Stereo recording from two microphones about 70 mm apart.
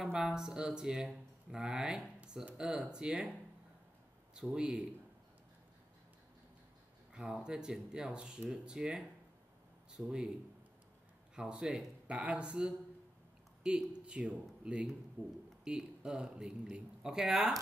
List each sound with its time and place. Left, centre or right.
0.0 s speech: centre
4.5 s speech: centre
7.2 s speech: centre
10.0 s speech: centre
11.3 s speech: centre
15.2 s a man's voice: right
15.6 s speech: centre